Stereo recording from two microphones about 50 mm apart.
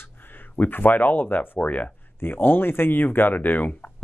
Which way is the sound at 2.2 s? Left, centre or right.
Left.